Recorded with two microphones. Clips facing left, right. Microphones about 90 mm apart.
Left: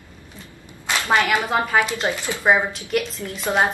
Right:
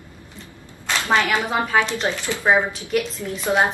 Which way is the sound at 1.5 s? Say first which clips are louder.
Even; 5° left (ahead or behind).